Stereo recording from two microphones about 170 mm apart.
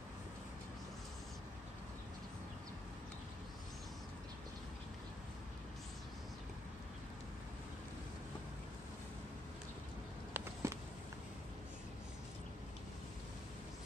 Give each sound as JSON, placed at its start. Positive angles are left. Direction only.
{"t": 10.6, "sound": "walk", "side_deg": -15}